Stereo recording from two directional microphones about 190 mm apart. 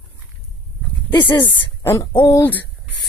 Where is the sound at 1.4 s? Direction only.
15° left (ahead or behind).